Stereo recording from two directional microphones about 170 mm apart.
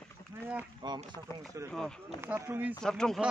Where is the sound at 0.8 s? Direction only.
25° right (ahead or behind).